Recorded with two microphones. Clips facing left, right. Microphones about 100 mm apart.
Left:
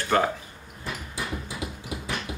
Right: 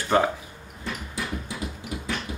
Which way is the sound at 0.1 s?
15° right (ahead or behind).